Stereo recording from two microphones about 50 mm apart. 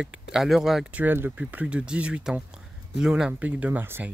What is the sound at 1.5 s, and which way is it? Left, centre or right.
Speech, right.